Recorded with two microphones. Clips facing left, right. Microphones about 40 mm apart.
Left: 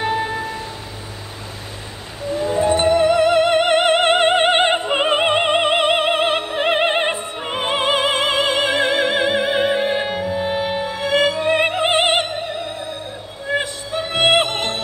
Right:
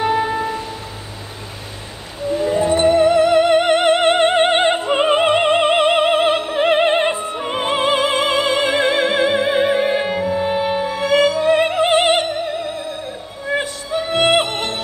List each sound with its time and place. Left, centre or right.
0.0 s music: centre
2.2 s music: centre
2.8 s music: left
4.5 s opera: left
7.3 s opera: centre
7.6 s opera: centre
8.0 s opera: left
9.1 s music: centre
9.8 s music: centre
11.1 s music: left
14.1 s music: left